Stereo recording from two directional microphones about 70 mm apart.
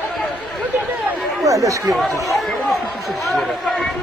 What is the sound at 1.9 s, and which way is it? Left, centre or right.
A man's voice, centre.